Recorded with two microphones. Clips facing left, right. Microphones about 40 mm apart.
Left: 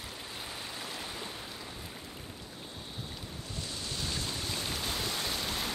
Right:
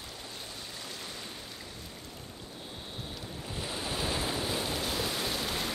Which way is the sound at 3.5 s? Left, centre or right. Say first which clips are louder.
Right 5 dB; right.